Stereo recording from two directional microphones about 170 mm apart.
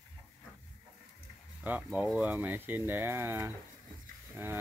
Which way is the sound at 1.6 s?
10° right (ahead or behind).